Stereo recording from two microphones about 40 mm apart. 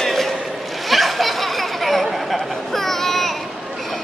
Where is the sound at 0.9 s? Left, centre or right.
Centre.